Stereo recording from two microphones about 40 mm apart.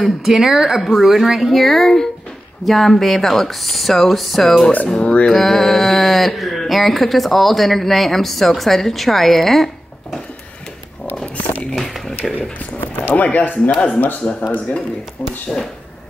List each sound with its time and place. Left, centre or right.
0.0 s speech: centre
1.5 s speech: centre
4.5 s speech: centre
5.0 s speech: left
5.3 s speech: centre
11.3 s a sound: left
11.8 s speech: centre
12.8 s speech: left